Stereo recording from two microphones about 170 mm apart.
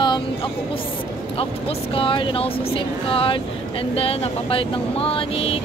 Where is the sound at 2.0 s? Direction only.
30° left (ahead or behind).